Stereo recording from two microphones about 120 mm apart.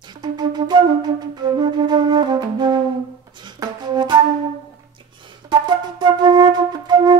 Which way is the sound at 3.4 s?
40° right (ahead or behind).